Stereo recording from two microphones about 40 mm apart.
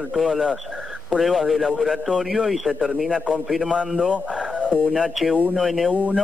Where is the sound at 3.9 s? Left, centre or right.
Right.